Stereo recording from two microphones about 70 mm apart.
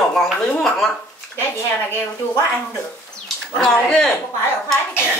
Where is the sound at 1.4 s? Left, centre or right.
Left.